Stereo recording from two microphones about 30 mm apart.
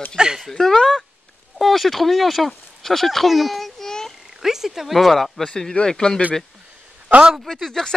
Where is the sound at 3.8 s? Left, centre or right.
Centre.